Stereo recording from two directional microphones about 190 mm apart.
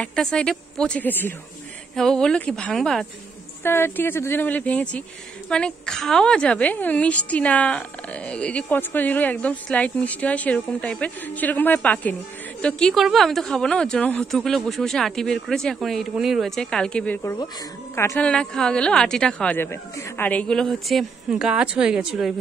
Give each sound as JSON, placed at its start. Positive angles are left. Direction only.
{"t": 0.0, "sound": "a woman's voice", "side_deg": 5}